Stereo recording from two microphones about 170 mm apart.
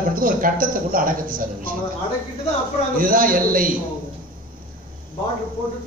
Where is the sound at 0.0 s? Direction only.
55° right (ahead or behind).